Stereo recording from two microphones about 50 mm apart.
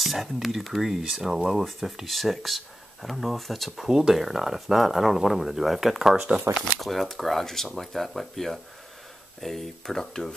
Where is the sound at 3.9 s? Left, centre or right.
Centre.